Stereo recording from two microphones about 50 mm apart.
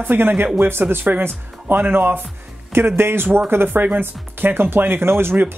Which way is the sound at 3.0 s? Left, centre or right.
Right.